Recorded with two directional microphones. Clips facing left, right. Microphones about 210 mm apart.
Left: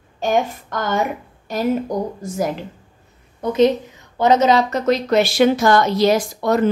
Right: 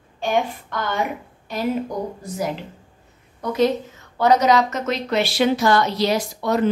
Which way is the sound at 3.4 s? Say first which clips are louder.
Left 4 dB; 20° left (ahead or behind).